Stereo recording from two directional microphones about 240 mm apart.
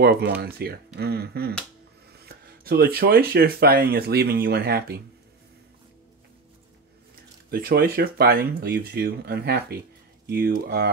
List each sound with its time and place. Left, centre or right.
0.0 s speech: right
7.5 s speech: right